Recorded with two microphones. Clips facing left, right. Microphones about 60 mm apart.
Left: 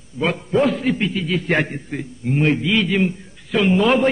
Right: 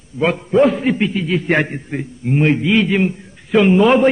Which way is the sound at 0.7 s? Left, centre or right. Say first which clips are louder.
Right 3 dB; centre.